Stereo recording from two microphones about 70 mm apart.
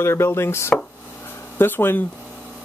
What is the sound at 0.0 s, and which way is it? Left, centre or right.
Speech, left.